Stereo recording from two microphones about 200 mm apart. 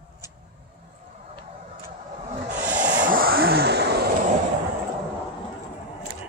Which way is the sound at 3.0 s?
45° right (ahead or behind).